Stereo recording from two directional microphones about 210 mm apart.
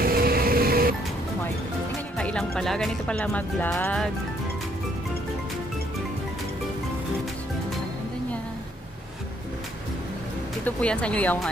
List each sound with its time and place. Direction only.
0.0 s music: 45° right (ahead or behind)
2.1 s speech: 5° left (ahead or behind)
10.6 s speech: 5° left (ahead or behind)